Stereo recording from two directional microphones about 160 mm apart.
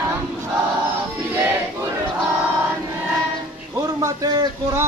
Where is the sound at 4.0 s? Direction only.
25° right (ahead or behind).